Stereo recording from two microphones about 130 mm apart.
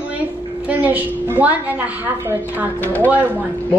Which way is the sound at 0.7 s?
15° right (ahead or behind).